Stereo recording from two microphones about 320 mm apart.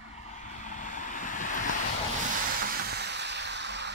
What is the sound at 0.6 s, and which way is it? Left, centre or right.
Vehicle, left.